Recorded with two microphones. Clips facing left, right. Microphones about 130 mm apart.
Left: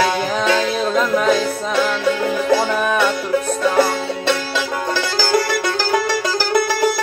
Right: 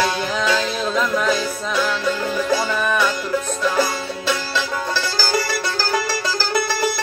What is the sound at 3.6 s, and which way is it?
Music, 60° left (ahead or behind).